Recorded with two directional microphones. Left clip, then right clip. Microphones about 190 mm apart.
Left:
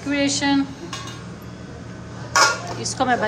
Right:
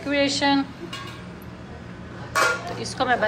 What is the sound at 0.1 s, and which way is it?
Speech, 10° left (ahead or behind).